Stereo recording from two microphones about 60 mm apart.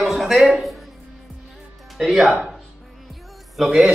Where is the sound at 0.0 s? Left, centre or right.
Centre.